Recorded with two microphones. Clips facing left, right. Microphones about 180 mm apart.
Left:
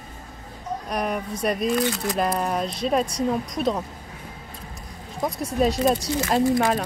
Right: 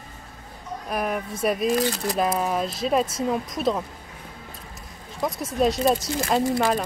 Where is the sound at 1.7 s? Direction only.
35° right (ahead or behind).